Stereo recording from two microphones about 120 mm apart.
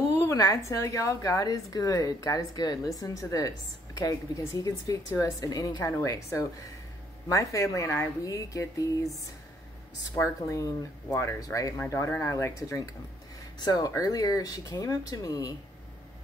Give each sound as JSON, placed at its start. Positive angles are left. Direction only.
{"t": 0.1, "sound": "a sound", "side_deg": 25}
{"t": 0.7, "sound": "a woman's voice", "side_deg": 25}
{"t": 11.1, "sound": "a woman's voice", "side_deg": 25}